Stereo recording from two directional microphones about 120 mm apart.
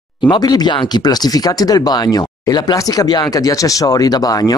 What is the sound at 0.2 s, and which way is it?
Speech, 40° left (ahead or behind).